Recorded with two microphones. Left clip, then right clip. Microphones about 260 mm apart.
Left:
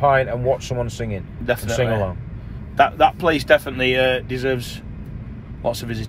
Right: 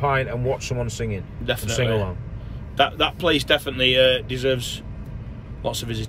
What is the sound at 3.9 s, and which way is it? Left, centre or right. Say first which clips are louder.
Speech: right 1 dB; left.